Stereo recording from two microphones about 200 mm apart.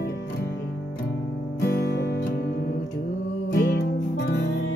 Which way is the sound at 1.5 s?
50° left (ahead or behind).